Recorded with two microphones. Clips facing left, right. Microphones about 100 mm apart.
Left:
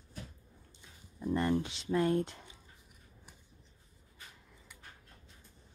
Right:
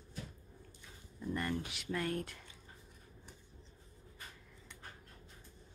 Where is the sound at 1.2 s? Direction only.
25° left (ahead or behind).